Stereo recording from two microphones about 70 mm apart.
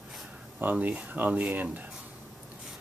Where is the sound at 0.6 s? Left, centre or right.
Right.